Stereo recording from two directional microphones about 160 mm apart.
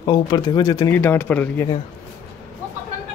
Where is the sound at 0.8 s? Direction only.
15° left (ahead or behind).